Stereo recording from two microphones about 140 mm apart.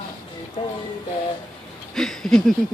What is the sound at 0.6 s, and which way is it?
Speech, 45° left (ahead or behind).